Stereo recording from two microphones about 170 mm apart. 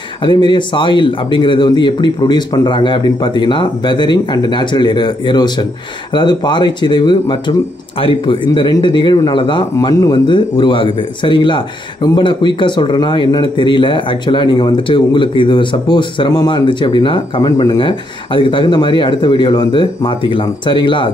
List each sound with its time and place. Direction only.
0.2 s speech: 25° left (ahead or behind)